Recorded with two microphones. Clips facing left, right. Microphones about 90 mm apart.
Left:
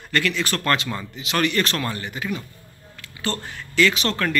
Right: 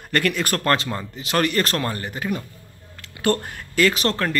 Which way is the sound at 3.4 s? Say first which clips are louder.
Even; 45° right (ahead or behind).